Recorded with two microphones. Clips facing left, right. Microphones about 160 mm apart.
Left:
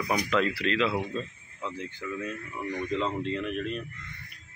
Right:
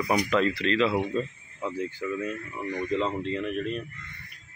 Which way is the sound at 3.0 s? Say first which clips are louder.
Right 1 dB; centre (ahead or behind).